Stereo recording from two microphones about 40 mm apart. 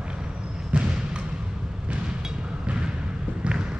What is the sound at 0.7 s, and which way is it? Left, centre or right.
Basketball bounce, right.